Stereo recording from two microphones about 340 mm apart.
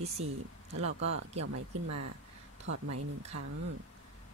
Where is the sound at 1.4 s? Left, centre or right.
Right.